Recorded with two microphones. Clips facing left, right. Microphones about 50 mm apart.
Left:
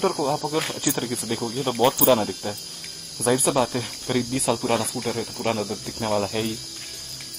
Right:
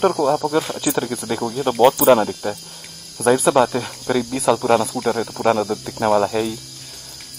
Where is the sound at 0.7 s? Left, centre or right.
Right.